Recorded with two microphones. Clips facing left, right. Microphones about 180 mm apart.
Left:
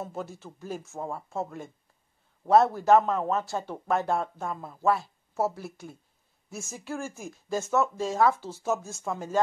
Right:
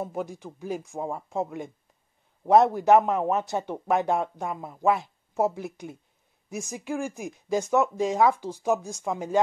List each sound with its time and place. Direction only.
0.0 s a man's voice: 15° right (ahead or behind)